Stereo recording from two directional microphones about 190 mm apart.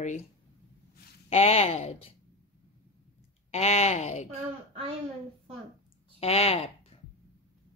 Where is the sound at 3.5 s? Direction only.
35° left (ahead or behind).